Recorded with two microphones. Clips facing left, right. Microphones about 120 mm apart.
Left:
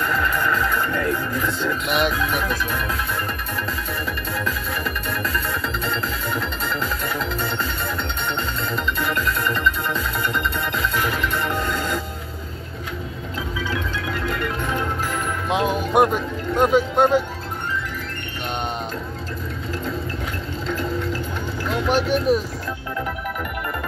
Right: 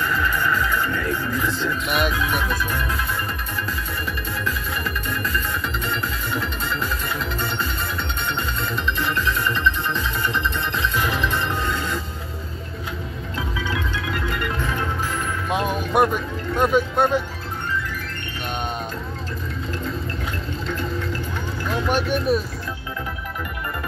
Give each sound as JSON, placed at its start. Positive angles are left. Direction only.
{"t": 1.9, "sound": "speech", "side_deg": 20}
{"t": 9.5, "sound": "music", "side_deg": 0}
{"t": 11.7, "sound": "music", "side_deg": 0}
{"t": 15.5, "sound": "music", "side_deg": 15}
{"t": 21.8, "sound": "vehicle", "side_deg": 15}